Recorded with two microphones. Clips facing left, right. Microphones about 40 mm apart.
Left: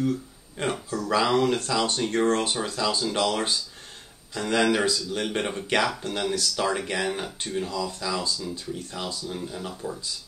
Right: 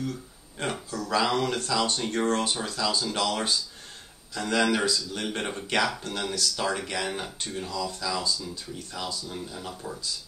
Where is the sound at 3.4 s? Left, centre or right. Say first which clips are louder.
Even; left.